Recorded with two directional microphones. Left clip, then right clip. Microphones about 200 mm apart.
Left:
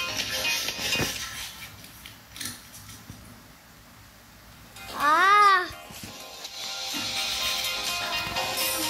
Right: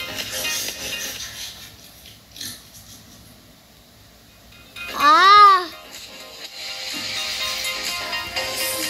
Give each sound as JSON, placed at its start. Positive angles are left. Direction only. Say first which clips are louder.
{"t": 0.0, "sound": "music", "louder": "right 1 dB", "side_deg": -40}
{"t": 5.0, "sound": "music", "louder": "right 8 dB", "side_deg": -60}
{"t": 5.4, "sound": "music", "louder": "right 7 dB", "side_deg": -35}